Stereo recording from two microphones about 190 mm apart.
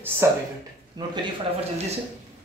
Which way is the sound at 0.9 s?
25° right (ahead or behind).